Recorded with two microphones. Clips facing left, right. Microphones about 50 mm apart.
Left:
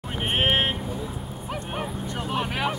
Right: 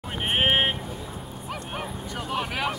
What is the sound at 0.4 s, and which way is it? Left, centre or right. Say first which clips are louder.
Vehicle: right 1 dB; centre.